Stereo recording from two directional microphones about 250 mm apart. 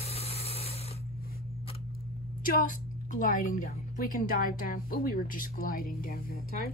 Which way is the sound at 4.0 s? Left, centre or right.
Left.